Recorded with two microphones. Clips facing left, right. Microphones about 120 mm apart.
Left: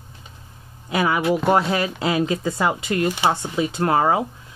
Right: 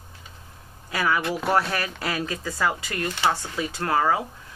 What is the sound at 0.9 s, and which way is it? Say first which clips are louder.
Speech: left 5 dB; 20° left (ahead or behind).